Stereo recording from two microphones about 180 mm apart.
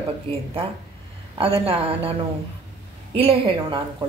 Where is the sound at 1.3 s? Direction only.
30° right (ahead or behind).